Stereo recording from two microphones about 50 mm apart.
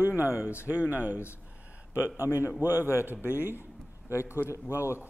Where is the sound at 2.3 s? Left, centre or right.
Left.